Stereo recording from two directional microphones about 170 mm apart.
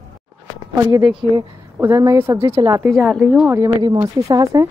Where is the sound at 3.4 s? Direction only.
15° right (ahead or behind).